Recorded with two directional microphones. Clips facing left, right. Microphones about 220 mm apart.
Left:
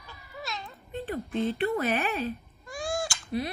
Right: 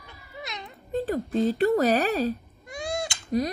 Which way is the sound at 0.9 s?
40° right (ahead or behind).